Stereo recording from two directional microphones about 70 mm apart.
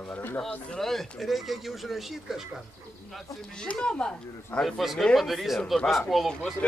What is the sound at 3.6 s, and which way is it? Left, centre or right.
Speech, centre.